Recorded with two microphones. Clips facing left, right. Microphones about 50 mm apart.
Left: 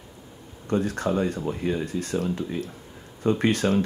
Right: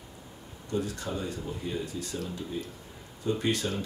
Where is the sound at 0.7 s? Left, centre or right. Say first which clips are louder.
Left 8 dB; left.